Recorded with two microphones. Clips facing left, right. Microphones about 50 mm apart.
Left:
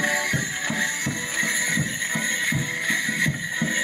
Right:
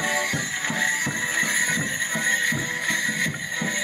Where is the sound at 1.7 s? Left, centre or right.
Right.